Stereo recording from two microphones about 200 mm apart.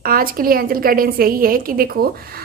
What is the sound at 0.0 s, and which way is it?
A woman's voice, 45° right (ahead or behind).